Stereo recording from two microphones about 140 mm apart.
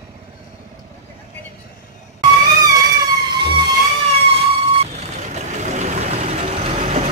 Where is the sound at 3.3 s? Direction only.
35° right (ahead or behind).